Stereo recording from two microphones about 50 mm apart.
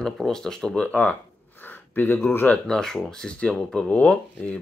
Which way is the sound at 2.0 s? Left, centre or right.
Left.